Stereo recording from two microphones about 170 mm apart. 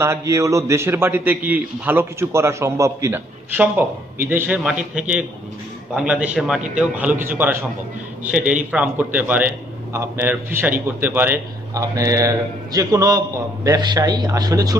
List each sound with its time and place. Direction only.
0.0 s a man's voice: 15° right (ahead or behind)